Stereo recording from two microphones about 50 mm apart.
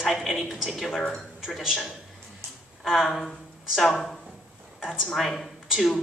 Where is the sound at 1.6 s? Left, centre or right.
Centre.